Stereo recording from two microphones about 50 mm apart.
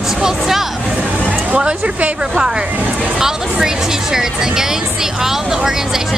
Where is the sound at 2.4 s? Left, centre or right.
Centre.